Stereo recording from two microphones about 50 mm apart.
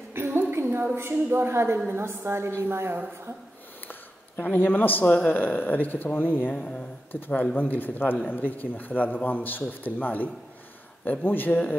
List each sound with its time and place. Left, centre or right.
0.1 s a sound: right
1.3 s a woman's voice: right
4.4 s a man's voice: left